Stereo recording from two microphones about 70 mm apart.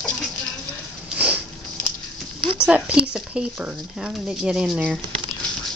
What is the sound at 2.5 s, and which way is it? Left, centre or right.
Speech, centre.